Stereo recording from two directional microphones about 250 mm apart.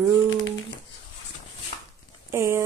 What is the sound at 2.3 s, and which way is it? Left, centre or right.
Speech, centre.